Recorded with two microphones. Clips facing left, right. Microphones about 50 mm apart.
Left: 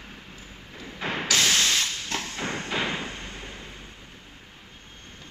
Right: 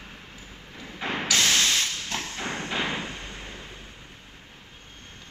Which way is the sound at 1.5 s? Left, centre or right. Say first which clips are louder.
Even; centre.